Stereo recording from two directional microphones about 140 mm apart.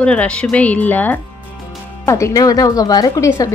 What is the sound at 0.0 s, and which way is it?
A woman's voice, 5° left (ahead or behind).